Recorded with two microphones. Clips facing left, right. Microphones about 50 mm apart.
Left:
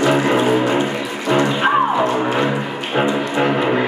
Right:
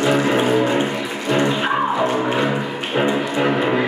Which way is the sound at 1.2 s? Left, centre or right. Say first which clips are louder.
Left 3 dB; left.